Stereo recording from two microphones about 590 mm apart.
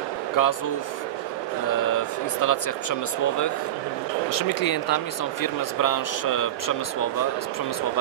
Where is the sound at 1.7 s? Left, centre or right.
Left.